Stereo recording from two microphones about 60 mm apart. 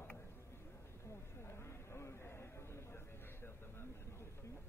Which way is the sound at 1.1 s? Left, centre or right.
Left.